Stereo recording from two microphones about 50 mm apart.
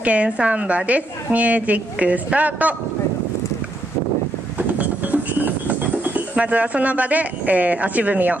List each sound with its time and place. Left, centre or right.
0.0 s a woman's voice: right
4.6 s music: right